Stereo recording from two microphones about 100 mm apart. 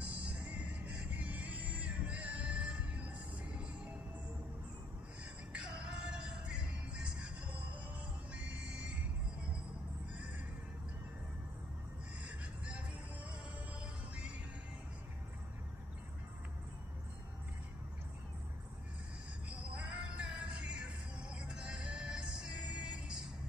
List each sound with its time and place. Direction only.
0.0 s music: 15° right (ahead or behind)
5.5 s music: 10° right (ahead or behind)
8.4 s music: 10° right (ahead or behind)
19.5 s music: 10° right (ahead or behind)